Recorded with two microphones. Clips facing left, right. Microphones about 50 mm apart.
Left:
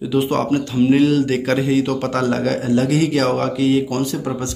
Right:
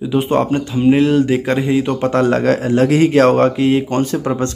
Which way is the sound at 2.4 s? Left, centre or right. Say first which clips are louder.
Right 4 dB; right.